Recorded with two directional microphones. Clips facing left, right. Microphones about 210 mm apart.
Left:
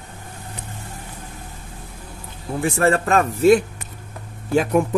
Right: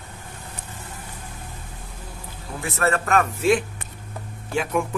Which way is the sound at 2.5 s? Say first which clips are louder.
Left 5 dB; 30° left (ahead or behind).